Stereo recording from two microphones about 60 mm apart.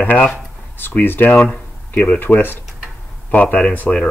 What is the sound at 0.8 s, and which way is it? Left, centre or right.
Speech, left.